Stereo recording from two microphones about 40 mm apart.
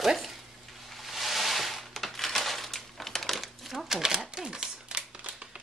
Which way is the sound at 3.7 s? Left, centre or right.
Centre.